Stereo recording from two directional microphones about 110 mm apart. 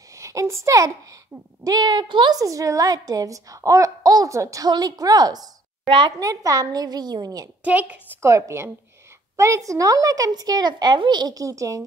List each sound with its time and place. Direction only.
0.1 s a woman's voice: 30° right (ahead or behind)
5.9 s a woman's voice: 50° right (ahead or behind)
6.1 s a woman's voice: 30° right (ahead or behind)
7.6 s a woman's voice: 10° right (ahead or behind)
8.2 s a woman's voice: 25° right (ahead or behind)